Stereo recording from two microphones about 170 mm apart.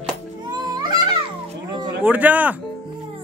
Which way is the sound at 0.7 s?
25° right (ahead or behind).